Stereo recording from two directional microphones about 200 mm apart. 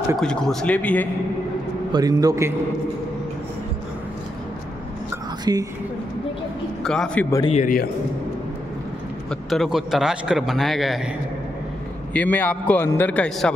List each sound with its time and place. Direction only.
0.2 s speech: 5° left (ahead or behind)
1.9 s a man's voice: 20° right (ahead or behind)
5.4 s a woman's voice: 20° right (ahead or behind)
6.8 s speech: centre (ahead or behind)
7.4 s a man's voice: 40° left (ahead or behind)
9.3 s speech: centre (ahead or behind)
12.1 s a man's voice: 10° left (ahead or behind)